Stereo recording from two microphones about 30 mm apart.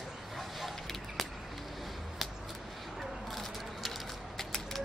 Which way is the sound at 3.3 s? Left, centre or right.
Centre.